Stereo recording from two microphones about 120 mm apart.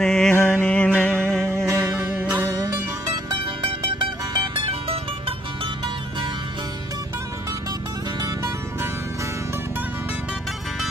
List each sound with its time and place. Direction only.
0.0 s mantra: 5° left (ahead or behind)
0.3 s music: 20° left (ahead or behind)
2.1 s music: 15° right (ahead or behind)
4.3 s music: 40° right (ahead or behind)